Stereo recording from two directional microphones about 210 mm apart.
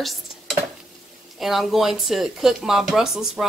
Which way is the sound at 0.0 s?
Centre (ahead or behind).